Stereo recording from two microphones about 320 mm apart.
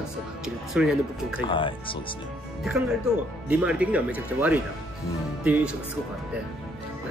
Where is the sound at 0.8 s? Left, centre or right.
Centre.